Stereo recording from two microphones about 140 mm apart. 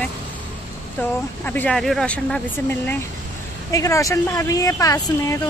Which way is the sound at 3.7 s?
25° left (ahead or behind).